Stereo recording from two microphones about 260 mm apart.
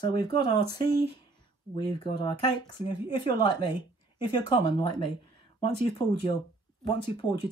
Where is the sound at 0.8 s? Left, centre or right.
Right.